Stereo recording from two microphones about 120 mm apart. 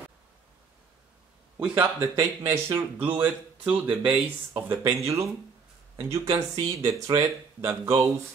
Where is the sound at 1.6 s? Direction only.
15° right (ahead or behind).